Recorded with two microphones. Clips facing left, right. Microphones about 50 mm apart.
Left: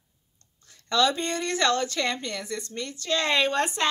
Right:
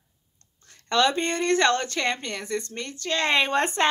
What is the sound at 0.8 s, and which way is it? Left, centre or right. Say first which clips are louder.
A woman's voice: right 2 dB; right.